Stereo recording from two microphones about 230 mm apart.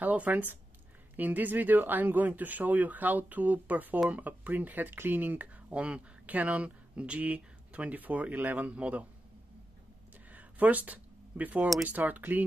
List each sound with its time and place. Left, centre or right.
0.0 s speech: centre
10.3 s speech: centre